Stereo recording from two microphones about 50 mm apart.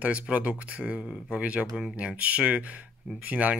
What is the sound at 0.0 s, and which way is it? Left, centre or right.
Speech, right.